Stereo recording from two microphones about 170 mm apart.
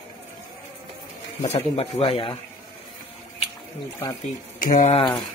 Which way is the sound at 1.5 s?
40° left (ahead or behind).